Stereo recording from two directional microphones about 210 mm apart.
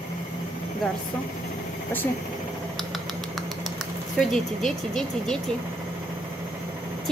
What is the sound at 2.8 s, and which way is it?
Typing, centre (ahead or behind).